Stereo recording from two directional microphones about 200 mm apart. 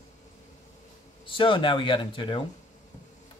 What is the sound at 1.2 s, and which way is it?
Speech, 25° left (ahead or behind).